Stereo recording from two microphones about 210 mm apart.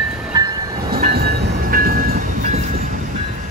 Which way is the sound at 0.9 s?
45° right (ahead or behind).